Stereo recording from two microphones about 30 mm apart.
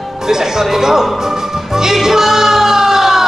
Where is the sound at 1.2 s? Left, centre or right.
Centre.